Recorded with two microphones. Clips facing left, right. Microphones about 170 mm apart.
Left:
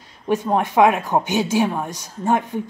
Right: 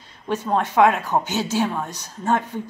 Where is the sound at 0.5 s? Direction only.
15° left (ahead or behind).